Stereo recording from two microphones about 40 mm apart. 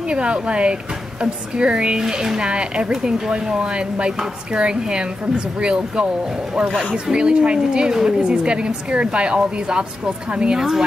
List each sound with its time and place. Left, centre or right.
0.0 s a woman's voice: right
7.1 s a woman's voice: right